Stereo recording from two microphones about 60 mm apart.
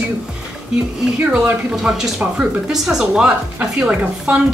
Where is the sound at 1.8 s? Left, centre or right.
Centre.